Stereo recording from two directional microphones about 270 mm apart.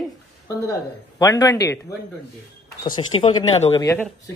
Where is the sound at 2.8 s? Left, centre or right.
Centre.